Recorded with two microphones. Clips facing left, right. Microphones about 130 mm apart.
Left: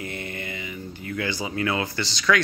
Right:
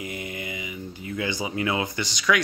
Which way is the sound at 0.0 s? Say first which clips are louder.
Even; 15° right (ahead or behind).